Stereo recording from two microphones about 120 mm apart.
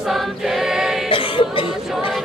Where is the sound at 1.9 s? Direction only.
Centre (ahead or behind).